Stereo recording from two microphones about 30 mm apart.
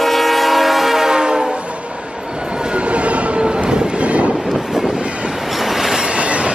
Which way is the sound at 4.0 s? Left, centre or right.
Right.